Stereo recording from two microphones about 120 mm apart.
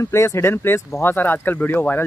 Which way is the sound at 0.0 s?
25° left (ahead or behind).